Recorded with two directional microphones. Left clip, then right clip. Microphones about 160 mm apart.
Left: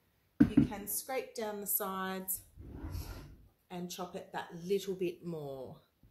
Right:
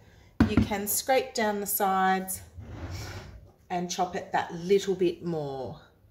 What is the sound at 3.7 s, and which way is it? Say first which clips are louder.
Speech: right 13 dB; 15° right (ahead or behind).